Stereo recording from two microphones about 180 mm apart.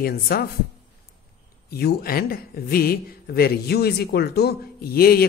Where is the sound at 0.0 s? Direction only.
60° left (ahead or behind).